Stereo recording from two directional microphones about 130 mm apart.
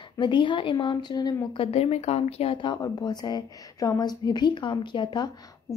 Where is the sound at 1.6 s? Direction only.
50° left (ahead or behind).